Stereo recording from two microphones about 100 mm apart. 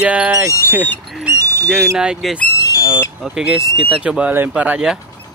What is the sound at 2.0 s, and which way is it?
Speech, 5° right (ahead or behind).